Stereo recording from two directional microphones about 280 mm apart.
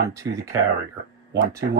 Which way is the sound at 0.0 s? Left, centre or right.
Centre.